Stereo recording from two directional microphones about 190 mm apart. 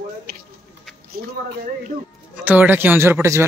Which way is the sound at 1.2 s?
50° right (ahead or behind).